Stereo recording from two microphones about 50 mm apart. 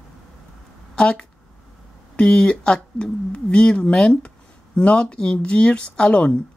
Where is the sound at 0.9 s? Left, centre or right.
Left.